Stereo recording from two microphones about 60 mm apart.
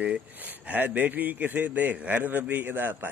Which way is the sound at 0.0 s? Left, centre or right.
Right.